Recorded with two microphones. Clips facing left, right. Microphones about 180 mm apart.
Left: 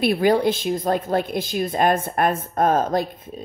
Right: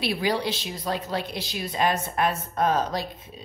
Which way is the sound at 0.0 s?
50° left (ahead or behind).